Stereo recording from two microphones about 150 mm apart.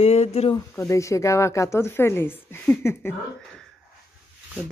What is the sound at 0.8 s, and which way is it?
Speech, 20° left (ahead or behind).